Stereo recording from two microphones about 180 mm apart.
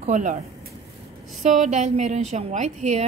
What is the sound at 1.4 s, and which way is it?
Speech, 40° right (ahead or behind).